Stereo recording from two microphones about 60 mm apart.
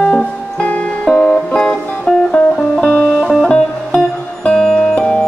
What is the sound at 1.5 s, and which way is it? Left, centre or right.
Music, centre.